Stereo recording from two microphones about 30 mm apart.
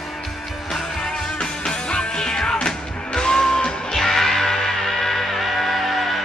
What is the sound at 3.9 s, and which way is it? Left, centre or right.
Music, centre.